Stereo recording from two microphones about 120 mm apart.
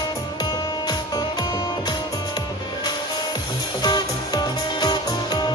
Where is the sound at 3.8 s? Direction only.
35° left (ahead or behind).